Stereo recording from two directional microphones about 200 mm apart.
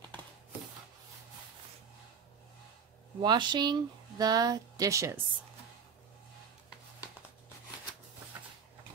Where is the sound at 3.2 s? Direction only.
20° right (ahead or behind).